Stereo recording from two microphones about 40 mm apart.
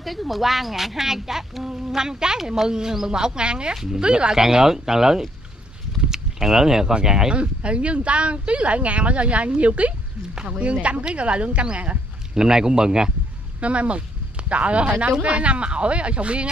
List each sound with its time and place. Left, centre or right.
0.0 s speech: centre; by 3.7 s right
3.7 s speech: centre
7.3 s speech: right
12.4 s speech: centre
13.6 s speech: right